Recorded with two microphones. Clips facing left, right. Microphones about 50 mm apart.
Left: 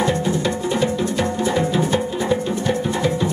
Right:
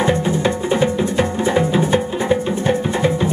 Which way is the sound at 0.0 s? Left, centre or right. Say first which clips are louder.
Right 3 dB; right.